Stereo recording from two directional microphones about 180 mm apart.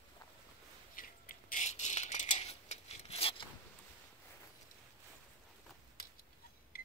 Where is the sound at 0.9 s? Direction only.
50° left (ahead or behind); by 3.4 s 30° left (ahead or behind).